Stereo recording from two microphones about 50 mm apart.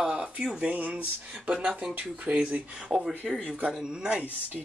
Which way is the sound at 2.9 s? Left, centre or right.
Centre.